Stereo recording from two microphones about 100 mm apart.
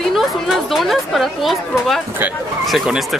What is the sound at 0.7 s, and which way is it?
Speech, centre (ahead or behind).